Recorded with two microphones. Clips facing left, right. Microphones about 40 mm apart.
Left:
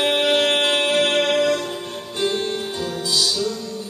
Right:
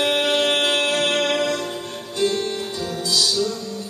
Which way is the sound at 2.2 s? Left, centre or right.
Centre.